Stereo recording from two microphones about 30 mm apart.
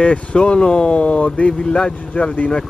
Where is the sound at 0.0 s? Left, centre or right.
Left.